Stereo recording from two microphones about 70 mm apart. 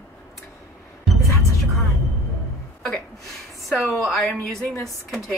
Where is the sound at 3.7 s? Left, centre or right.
Centre.